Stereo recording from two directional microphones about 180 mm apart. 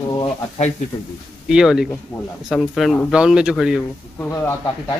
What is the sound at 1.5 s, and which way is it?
Speech, 5° right (ahead or behind).